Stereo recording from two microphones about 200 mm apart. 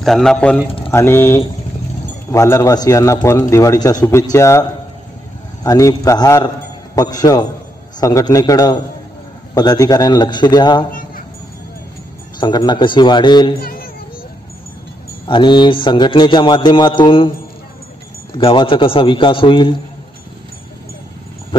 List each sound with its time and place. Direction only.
0.0 s a man's voice: centre (ahead or behind); by 10.9 s 20° left (ahead or behind)
10.9 s a sound: 45° left (ahead or behind)
12.4 s a man's voice: 20° left (ahead or behind)
13.6 s children playing: 50° left (ahead or behind)
15.2 s a man's voice: 25° left (ahead or behind)
18.3 s a man's voice: 25° left (ahead or behind)